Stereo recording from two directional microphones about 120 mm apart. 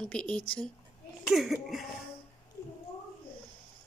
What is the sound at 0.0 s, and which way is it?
A woman's voice, 10° left (ahead or behind).